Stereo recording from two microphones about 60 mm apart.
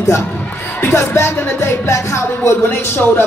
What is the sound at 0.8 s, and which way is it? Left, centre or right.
Speech, left.